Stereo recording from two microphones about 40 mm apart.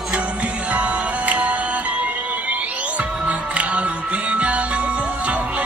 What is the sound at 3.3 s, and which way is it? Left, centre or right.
Music, right.